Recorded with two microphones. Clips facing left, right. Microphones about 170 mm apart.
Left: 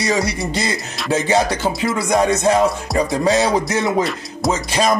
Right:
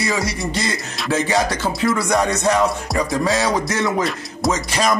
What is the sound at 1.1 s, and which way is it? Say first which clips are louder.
Music: left 2 dB; 25° left (ahead or behind).